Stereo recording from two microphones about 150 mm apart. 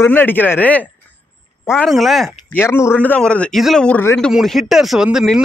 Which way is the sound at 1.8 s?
Centre (ahead or behind).